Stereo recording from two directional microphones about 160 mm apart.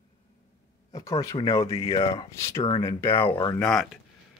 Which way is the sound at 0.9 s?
20° left (ahead or behind).